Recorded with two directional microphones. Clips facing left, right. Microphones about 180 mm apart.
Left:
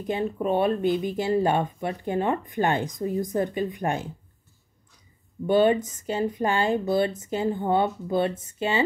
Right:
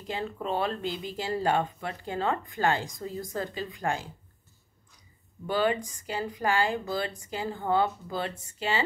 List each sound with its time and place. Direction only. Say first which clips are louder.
0.0 s speech: left 7 dB; 20° left (ahead or behind)
5.5 s speech: left 7 dB; 20° left (ahead or behind)